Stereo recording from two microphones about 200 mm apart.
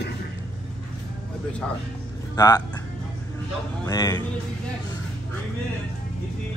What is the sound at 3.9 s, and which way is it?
Speech, 20° left (ahead or behind).